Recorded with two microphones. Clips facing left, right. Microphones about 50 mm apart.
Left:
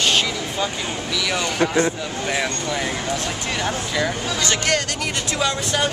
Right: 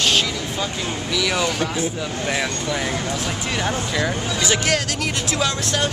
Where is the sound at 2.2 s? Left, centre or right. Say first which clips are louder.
Left 1 dB; centre.